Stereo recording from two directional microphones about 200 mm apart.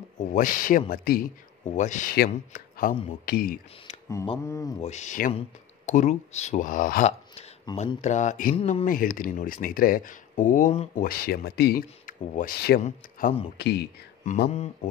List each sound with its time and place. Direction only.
0.2 s speech: 40° left (ahead or behind)
4.5 s speech: 15° left (ahead or behind)
4.8 s speech: 35° left (ahead or behind)
8.5 s speech: 30° left (ahead or behind)
8.8 s speech: 45° left (ahead or behind)
11.1 s speech: 50° left (ahead or behind)
12.8 s speech: 35° left (ahead or behind)
13.6 s speech: 55° left (ahead or behind)